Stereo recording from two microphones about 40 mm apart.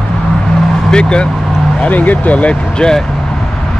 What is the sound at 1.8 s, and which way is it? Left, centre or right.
Speech, left.